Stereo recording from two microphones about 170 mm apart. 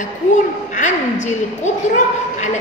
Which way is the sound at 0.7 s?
45° left (ahead or behind).